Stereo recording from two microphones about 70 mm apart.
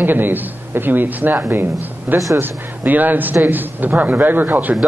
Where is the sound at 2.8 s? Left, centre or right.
Right.